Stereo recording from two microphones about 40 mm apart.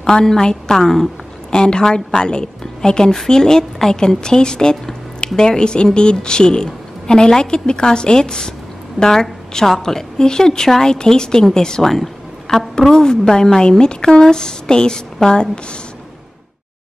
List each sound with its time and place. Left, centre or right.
0.1 s a woman's voice: centre
11.8 s a sound: centre
12.9 s a woman's voice: centre